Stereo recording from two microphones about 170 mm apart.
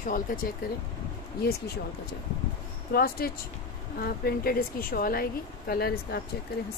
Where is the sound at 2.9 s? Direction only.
60° left (ahead or behind).